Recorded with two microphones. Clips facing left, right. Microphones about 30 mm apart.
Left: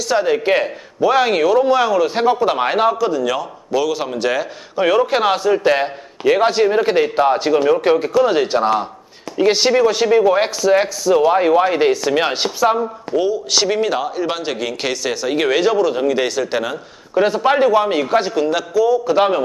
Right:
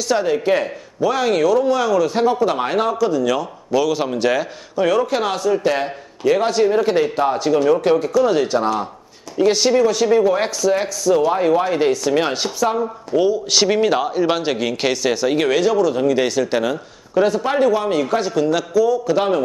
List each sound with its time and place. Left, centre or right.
0.1 s a man's voice: centre
4.7 s a man's voice: left
12.7 s a man's voice: centre
16.1 s speech: centre
17.1 s a man's voice: left